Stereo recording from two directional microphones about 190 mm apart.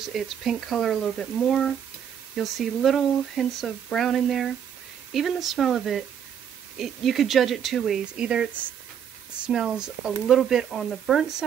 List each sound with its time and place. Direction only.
0.1 s speech: centre (ahead or behind)